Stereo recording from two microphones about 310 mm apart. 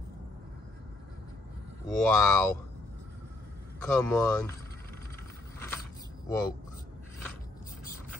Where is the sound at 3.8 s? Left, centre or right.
Centre.